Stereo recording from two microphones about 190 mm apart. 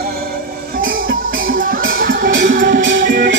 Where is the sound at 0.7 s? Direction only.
50° right (ahead or behind).